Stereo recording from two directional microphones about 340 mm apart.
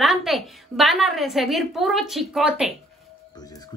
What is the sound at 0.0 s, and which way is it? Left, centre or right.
A woman's voice, centre.